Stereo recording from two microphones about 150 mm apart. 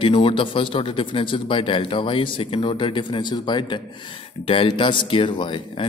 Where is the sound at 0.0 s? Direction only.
35° left (ahead or behind).